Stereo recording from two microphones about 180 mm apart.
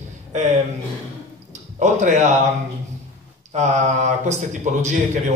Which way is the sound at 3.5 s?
40° right (ahead or behind).